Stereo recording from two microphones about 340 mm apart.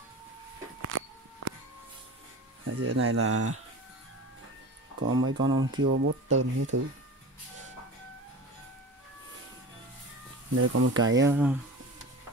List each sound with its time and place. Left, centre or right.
0.8 s a sound: right
2.6 s speech: right
5.0 s speech: right
10.5 s speech: right
11.2 s speech: centre